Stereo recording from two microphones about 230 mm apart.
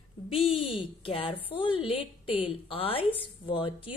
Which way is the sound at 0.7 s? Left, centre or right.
Left.